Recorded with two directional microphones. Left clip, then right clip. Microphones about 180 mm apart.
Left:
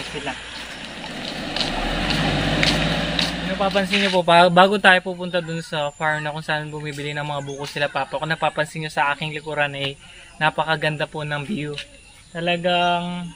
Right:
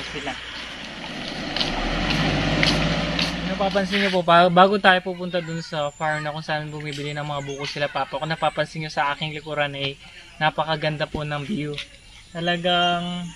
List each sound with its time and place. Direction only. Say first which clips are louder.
0.1 s speech: left 1 dB; centre (ahead or behind)
1.2 s vehicle: left 1 dB; centre (ahead or behind)
3.5 s speech: left 2 dB; 10° left (ahead or behind)
12.6 s mantra: left 1 dB; 55° left (ahead or behind)